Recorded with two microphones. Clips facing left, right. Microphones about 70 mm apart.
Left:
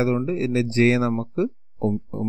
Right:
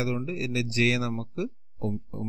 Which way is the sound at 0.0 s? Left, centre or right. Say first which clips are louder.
Left 8 dB; left.